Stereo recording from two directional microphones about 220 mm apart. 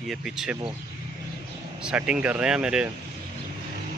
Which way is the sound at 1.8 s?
5° right (ahead or behind).